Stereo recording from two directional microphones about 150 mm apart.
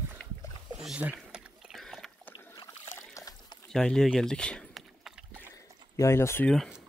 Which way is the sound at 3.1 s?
25° left (ahead or behind).